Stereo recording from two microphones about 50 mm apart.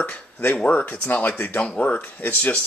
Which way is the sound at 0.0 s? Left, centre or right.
Left.